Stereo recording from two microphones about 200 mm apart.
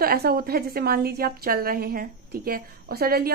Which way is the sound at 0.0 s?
50° right (ahead or behind).